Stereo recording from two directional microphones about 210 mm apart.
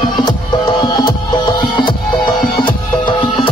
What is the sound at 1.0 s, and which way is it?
Music, 20° left (ahead or behind).